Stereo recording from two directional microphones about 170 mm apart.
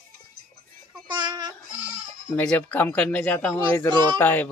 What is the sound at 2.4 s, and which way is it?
Speech, 10° left (ahead or behind).